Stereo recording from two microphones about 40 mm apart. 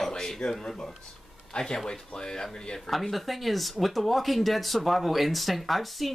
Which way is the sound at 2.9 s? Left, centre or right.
Centre.